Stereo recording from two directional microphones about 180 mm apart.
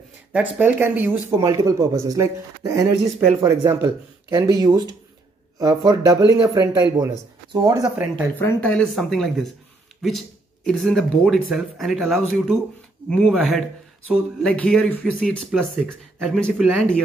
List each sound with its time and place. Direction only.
0.6 s a man's voice: 10° right (ahead or behind)
3.0 s speech: centre (ahead or behind)
3.4 s a man's voice: 15° right (ahead or behind)
8.4 s speech: 10° left (ahead or behind)